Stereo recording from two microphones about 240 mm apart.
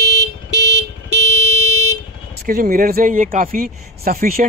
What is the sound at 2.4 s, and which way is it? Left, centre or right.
Speech, right.